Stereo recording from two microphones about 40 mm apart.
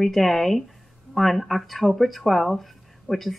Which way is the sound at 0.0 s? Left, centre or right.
Centre.